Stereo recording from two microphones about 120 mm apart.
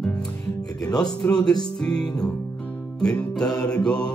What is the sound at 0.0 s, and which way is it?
Music, 5° left (ahead or behind).